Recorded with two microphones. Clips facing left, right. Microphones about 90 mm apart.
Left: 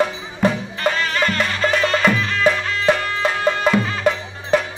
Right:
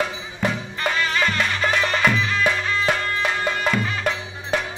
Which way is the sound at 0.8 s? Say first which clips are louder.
Left 2 dB; 10° right (ahead or behind).